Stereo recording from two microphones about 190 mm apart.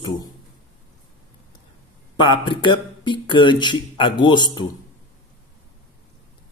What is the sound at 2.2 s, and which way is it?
Speech, 25° left (ahead or behind).